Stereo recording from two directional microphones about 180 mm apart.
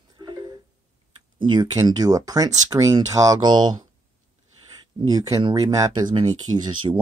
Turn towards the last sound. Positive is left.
turn(degrees=-25)  # may be behind; listen again after turning